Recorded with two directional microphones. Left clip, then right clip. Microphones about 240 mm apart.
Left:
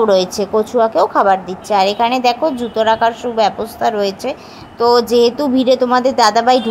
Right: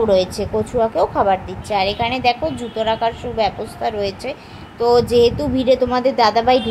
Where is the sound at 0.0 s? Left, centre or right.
Centre.